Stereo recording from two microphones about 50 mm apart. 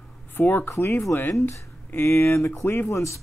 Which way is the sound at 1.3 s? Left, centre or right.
Left.